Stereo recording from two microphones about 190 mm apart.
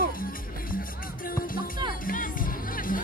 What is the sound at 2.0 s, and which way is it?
Music, 45° left (ahead or behind).